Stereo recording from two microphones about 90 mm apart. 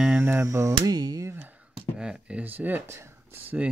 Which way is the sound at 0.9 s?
45° right (ahead or behind).